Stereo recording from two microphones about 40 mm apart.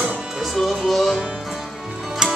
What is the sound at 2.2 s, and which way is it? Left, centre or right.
Music, centre.